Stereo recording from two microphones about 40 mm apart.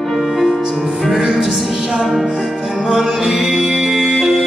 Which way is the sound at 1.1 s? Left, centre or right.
Centre.